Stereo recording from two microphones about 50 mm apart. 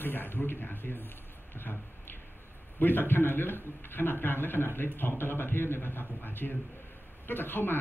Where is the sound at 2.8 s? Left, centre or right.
Left.